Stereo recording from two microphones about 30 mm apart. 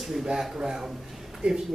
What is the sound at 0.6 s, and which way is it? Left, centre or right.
Speech, right.